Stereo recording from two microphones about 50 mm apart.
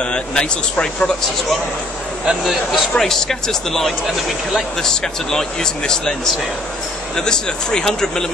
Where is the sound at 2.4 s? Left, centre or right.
Centre.